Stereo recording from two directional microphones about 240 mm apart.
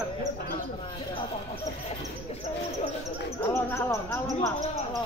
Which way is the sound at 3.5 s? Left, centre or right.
Centre.